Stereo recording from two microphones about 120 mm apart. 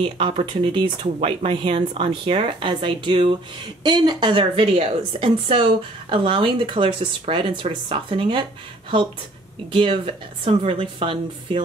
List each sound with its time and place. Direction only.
0.0 s a woman's voice: 50° right (ahead or behind)
9.7 s a woman's voice: 50° right (ahead or behind)